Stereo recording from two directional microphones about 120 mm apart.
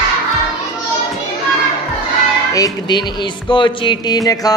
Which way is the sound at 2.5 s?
35° left (ahead or behind).